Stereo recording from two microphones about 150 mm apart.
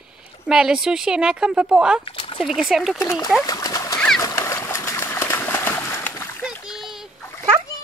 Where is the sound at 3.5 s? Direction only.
25° left (ahead or behind).